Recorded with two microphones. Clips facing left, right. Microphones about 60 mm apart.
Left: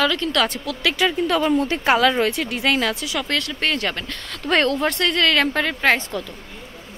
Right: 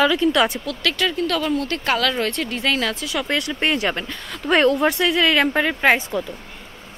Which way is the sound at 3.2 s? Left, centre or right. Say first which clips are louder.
Right 3 dB; centre.